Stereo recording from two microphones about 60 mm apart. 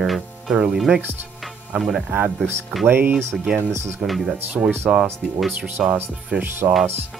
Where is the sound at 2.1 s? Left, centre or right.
Right.